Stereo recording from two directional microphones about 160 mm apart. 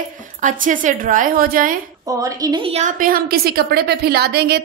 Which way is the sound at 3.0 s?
65° right (ahead or behind).